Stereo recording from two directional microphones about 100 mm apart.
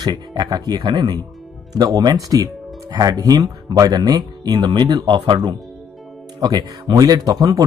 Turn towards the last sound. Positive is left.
turn(degrees=-40)  # may be behind; listen again after turning